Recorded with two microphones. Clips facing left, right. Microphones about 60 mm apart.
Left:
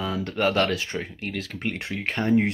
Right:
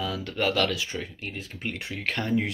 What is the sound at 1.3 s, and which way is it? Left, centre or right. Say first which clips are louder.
Speech: left 6 dB; left.